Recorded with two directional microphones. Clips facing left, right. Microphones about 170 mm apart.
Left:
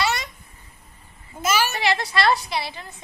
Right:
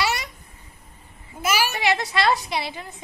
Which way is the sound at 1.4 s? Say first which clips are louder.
Left 1 dB; 10° right (ahead or behind).